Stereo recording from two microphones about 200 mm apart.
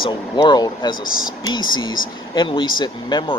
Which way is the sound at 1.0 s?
90° left.